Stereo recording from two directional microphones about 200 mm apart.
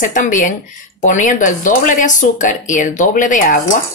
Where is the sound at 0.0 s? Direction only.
40° left (ahead or behind).